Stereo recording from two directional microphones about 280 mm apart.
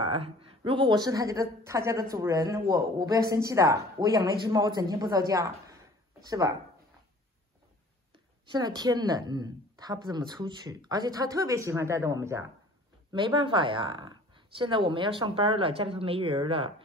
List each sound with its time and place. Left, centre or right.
0.0 s speech: centre
8.5 s speech: centre